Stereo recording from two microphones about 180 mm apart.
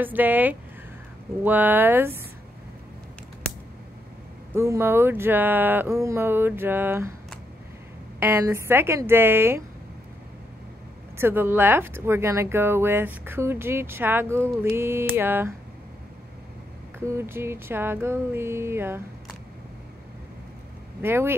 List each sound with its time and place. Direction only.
0.0 s speech: 10° right (ahead or behind)
4.6 s speech: 15° right (ahead or behind)
8.2 s speech: 15° right (ahead or behind)
11.1 s speech: 10° right (ahead or behind)
17.0 s speech: 15° right (ahead or behind)
21.0 s speech: 10° right (ahead or behind)